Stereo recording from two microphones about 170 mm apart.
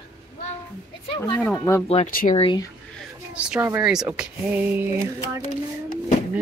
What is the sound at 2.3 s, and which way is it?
Speech, 30° left (ahead or behind).